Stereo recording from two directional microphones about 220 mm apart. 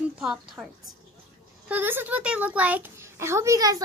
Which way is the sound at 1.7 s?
10° right (ahead or behind).